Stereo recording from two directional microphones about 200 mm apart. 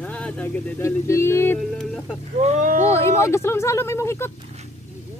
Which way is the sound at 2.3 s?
35° right (ahead or behind).